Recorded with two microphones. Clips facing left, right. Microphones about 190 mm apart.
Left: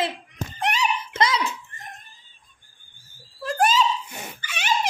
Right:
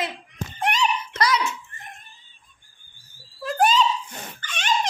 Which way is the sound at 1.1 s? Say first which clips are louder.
Left 1 dB; 25° left (ahead or behind).